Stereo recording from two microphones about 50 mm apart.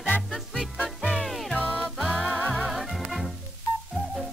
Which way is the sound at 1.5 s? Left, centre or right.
Left.